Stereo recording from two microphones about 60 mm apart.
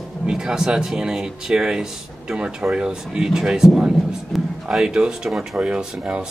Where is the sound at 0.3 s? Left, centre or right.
Centre.